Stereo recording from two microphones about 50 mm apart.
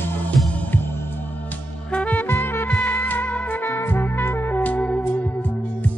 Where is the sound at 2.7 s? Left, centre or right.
Left.